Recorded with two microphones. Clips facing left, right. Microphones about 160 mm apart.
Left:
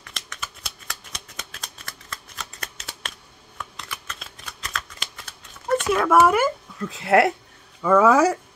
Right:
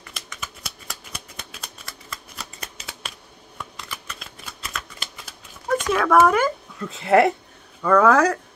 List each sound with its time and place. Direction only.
0.0 s shuffling cards: 5° right (ahead or behind)
7.8 s speech: 5° left (ahead or behind)